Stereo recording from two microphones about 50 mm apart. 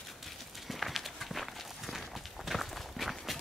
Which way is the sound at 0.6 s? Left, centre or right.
Centre.